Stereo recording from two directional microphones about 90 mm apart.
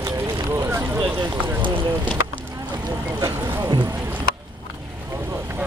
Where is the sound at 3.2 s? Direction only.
55° right (ahead or behind).